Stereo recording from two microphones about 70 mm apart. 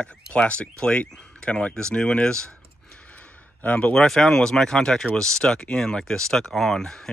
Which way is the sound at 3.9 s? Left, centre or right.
Centre.